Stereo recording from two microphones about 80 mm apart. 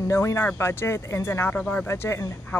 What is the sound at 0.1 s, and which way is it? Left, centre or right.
A woman's voice, left.